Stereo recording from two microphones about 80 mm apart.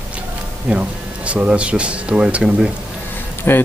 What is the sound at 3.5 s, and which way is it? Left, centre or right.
Speech, left.